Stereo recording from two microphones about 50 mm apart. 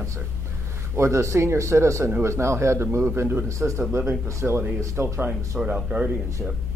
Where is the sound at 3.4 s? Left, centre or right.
Right.